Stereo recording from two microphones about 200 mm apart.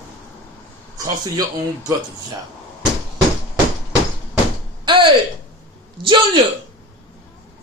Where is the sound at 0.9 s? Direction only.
20° right (ahead or behind).